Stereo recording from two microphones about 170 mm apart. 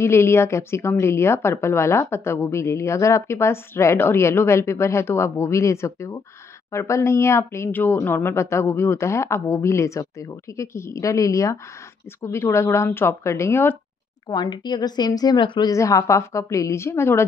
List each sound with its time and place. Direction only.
0.0 s a woman's voice: 15° left (ahead or behind)
14.3 s speech: 25° left (ahead or behind)